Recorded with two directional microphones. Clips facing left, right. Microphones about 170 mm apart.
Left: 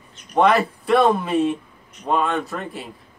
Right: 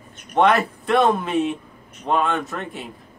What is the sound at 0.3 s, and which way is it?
Speech, centre (ahead or behind).